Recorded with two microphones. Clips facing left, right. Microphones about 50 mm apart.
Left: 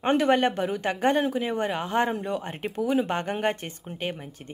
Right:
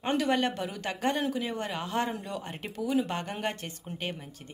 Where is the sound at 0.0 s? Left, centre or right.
Left; by 4.3 s centre.